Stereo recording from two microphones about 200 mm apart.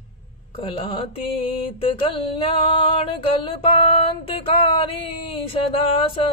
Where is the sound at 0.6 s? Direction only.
25° left (ahead or behind).